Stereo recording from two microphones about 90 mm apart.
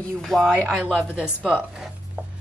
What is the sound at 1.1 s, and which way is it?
Speech, 15° right (ahead or behind).